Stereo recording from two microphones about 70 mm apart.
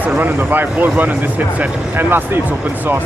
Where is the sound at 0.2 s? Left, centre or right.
Right.